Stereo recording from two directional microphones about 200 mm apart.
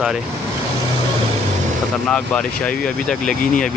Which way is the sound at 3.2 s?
45° left (ahead or behind).